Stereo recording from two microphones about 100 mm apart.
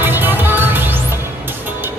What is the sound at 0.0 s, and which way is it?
Music, 20° right (ahead or behind).